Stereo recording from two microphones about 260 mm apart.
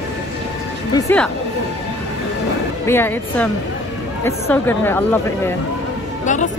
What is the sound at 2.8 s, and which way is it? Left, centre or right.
Speech, centre.